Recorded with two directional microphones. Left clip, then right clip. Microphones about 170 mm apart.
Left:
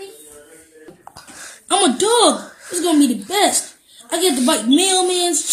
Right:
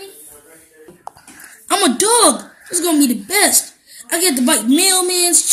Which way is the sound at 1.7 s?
50° right (ahead or behind).